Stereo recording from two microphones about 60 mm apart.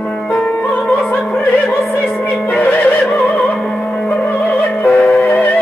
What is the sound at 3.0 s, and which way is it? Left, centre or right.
Music, centre.